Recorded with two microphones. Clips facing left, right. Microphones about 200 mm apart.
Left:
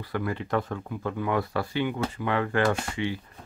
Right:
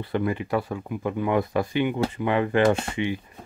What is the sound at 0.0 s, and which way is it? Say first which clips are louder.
Speech: right 5 dB; 20° right (ahead or behind).